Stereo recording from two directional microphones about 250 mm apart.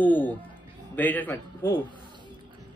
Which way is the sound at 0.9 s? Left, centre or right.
Centre.